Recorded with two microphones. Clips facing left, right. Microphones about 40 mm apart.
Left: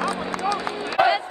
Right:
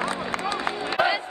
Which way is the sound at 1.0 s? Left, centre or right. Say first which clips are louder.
Left 4 dB; centre.